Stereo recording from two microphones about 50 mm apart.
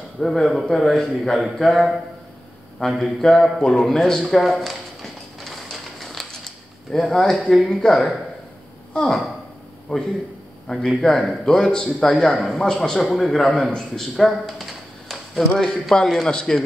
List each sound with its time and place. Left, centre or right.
0.2 s speech: centre
2.8 s a man's voice: centre
3.2 s a man's voice: centre
4.2 s a sound: centre
8.9 s speech: centre
9.9 s a man's voice: left
10.7 s a man's voice: centre
12.1 s a man's voice: centre
13.0 s a man's voice: centre